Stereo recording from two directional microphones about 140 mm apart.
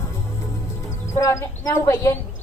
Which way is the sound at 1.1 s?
20° left (ahead or behind).